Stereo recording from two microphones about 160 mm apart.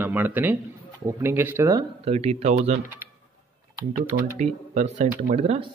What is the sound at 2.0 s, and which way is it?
Speech, 40° right (ahead or behind).